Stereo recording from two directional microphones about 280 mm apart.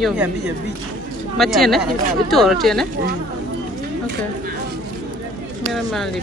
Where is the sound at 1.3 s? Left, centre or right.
Centre.